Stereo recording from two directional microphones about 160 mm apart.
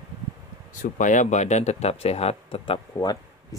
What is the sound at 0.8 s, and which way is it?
Speech, 50° left (ahead or behind).